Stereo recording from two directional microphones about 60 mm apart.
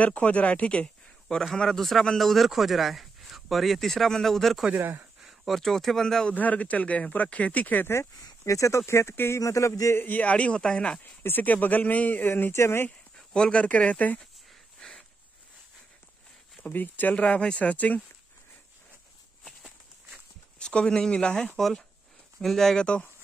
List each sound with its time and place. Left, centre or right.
0.0 s speech: left; by 4.6 s centre
4.7 s speech: right
5.2 s speech: centre
6.3 s speech: left
8.5 s speech: left
9.4 s speech: left
9.9 s speech: left
11.2 s speech: left
12.5 s speech: left
13.3 s speech: centre
14.8 s a sound: centre
16.6 s speech: left
20.5 s speech: centre
21.5 s speech: centre